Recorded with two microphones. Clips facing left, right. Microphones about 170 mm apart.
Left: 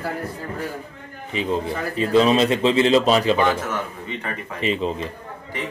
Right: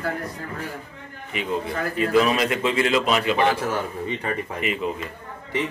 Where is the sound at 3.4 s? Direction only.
30° right (ahead or behind).